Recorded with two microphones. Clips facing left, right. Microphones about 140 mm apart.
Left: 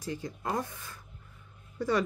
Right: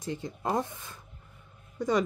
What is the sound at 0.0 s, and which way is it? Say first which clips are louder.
A woman's voice: right 2 dB; 25° right (ahead or behind).